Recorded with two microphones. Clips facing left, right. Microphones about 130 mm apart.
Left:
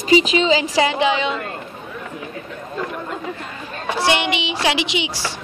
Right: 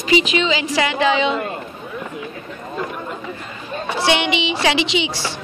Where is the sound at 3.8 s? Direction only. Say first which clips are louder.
Even; 5° left (ahead or behind).